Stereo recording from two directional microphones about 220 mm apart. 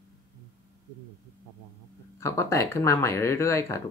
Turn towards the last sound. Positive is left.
turn(degrees=10)  # may be behind; listen again after turning